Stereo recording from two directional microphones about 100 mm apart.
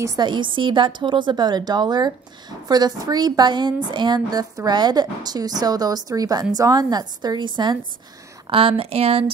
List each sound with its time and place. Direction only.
0.2 s a woman's voice: 55° right (ahead or behind)
8.5 s speech: 65° right (ahead or behind)